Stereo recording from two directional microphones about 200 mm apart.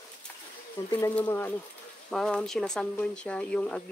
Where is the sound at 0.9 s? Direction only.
10° left (ahead or behind).